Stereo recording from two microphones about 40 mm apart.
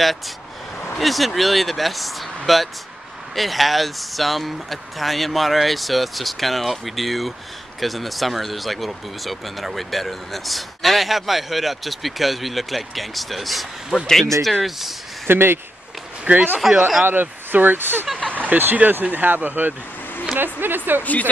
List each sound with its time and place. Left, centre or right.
0.9 s speech: centre
14.0 s speech: centre
15.2 s speech: right
16.3 s speech: right
16.6 s speech: centre
17.0 s speech: right
18.3 s speech: right
21.0 s speech: left